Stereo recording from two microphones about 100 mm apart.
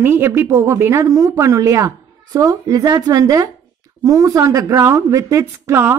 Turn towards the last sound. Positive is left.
turn(degrees=-25)  # may be behind; listen again after turning